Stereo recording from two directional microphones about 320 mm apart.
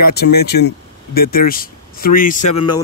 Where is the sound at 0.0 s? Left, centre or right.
Left.